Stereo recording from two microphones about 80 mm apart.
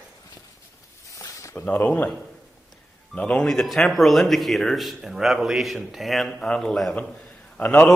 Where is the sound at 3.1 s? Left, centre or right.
Centre.